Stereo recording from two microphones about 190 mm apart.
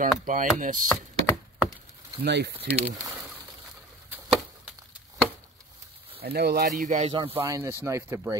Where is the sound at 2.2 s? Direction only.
60° right (ahead or behind).